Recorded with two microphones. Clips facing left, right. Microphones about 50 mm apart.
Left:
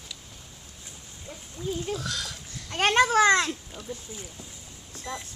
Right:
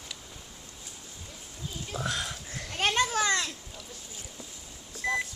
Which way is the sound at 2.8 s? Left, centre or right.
Left.